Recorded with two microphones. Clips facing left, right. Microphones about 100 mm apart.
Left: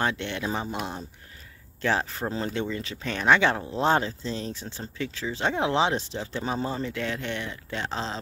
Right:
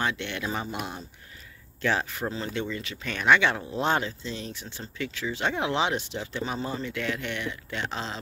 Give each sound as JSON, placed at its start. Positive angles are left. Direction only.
{"t": 0.0, "sound": "speech", "side_deg": 35}
{"t": 1.8, "sound": "speech", "side_deg": 30}